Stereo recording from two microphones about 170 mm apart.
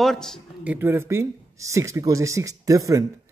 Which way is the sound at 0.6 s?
15° right (ahead or behind).